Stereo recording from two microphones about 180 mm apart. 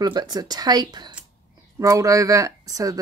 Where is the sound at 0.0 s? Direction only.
20° right (ahead or behind).